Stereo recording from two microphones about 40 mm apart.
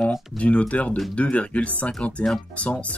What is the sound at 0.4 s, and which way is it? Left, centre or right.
Speech, left.